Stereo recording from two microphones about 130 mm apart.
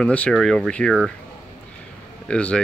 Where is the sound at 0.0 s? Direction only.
10° left (ahead or behind).